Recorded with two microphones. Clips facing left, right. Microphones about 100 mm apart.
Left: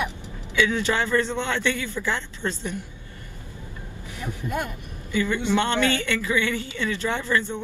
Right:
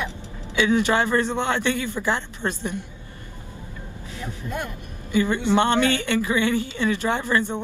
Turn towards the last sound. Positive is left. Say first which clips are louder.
# right 2 dB
turn(degrees=-15)  # may be behind; listen again after turning